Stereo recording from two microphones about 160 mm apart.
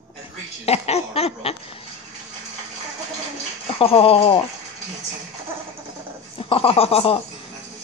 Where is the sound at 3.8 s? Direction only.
35° left (ahead or behind).